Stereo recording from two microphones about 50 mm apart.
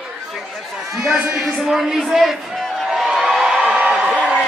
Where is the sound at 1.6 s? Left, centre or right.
Centre.